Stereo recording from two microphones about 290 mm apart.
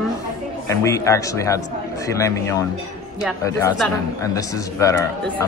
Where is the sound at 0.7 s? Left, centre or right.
Centre.